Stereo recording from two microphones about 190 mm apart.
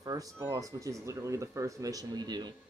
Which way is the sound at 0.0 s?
20° right (ahead or behind).